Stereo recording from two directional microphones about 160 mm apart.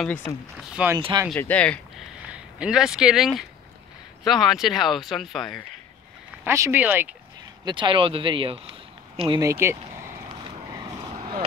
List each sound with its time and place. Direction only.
0.7 s speech: 5° right (ahead or behind)
0.9 s speech: 25° right (ahead or behind)
1.3 s speech: 10° left (ahead or behind)
2.3 s speech: 5° right (ahead or behind)
6.4 s speech: 15° right (ahead or behind)
7.6 s speech: 30° right (ahead or behind)
9.4 s speech: 15° right (ahead or behind)
10.8 s vehicle: 25° right (ahead or behind)
11.1 s vehicle: 35° right (ahead or behind)